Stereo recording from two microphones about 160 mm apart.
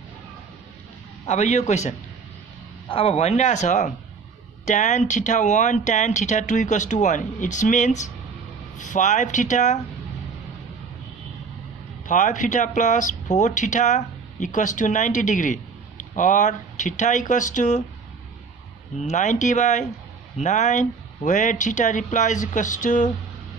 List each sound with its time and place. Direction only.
1.2 s speech: 45° left (ahead or behind)
12.1 s speech: 55° left (ahead or behind)
18.9 s speech: 50° left (ahead or behind)